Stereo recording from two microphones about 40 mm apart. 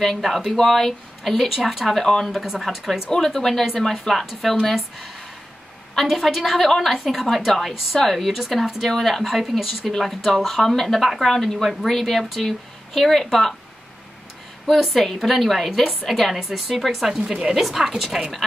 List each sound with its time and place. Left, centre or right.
0.2 s speech: centre
2.3 s a woman's voice: centre
14.8 s speech: centre
16.3 s a woman's voice: centre
16.6 s speech: centre
17.2 s a woman's voice: right
17.6 s a woman's voice: centre